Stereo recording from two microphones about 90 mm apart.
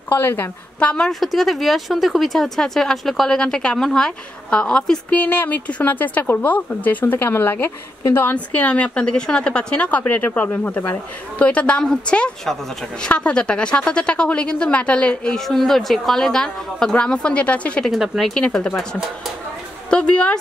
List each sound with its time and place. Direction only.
0.1 s a woman's voice: 25° left (ahead or behind); by 5.0 s 10° left (ahead or behind)
5.1 s a woman's voice: 20° left (ahead or behind)
17.8 s a woman's voice: centre (ahead or behind)
19.9 s a woman's voice: 10° left (ahead or behind)